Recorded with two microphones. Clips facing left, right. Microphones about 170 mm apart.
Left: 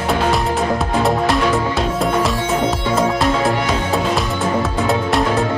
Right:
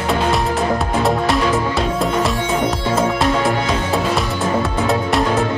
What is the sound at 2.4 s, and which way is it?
Music, 15° right (ahead or behind).